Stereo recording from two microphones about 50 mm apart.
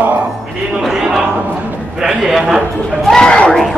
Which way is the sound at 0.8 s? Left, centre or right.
Centre.